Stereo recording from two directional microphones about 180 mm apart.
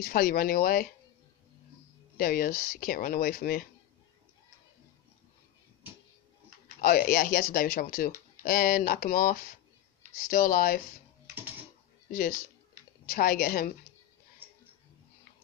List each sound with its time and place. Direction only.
0.0 s speech: 55° left (ahead or behind)
2.1 s speech: 55° left (ahead or behind)
6.8 s speech: 55° left (ahead or behind)
12.1 s speech: 50° left (ahead or behind)